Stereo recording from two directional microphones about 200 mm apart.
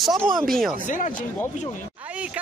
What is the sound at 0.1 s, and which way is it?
Speech, 20° right (ahead or behind).